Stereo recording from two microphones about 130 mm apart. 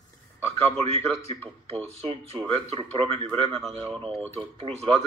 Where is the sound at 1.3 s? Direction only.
50° right (ahead or behind).